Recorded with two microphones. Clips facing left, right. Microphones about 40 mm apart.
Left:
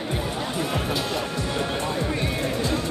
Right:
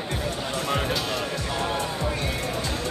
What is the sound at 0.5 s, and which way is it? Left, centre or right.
Music, centre.